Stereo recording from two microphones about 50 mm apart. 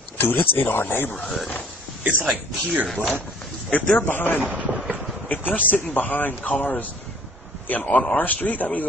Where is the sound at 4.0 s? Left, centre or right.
Left.